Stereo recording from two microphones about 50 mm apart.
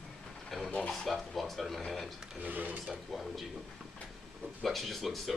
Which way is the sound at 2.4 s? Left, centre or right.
Right.